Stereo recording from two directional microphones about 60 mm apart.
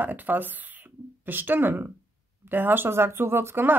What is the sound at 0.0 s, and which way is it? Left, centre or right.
Speech, right.